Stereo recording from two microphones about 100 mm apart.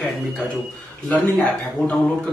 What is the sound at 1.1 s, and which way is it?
Speech, 15° left (ahead or behind).